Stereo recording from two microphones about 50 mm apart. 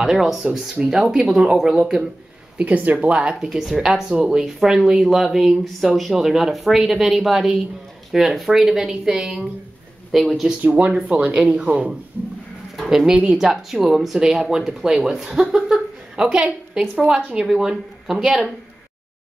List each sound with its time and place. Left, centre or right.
0.0 s speech: centre
2.5 s speech: right
3.3 s speech: centre
10.1 s speech: centre
10.6 s speech: right
12.7 s speech: centre
13.1 s speech: centre
13.4 s speech: centre
15.5 s a sound: centre
16.3 s a woman's voice: right
17.5 s speech: centre